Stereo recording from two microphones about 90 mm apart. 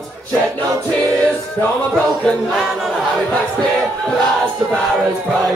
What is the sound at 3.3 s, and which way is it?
Battle cry, 10° left (ahead or behind).